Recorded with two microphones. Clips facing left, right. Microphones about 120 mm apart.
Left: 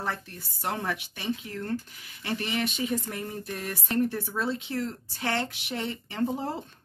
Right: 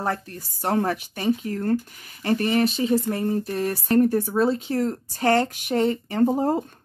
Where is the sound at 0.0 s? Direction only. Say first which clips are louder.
Right 7 dB; 45° right (ahead or behind).